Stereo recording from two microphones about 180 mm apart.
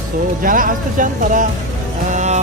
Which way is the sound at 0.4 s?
50° right (ahead or behind).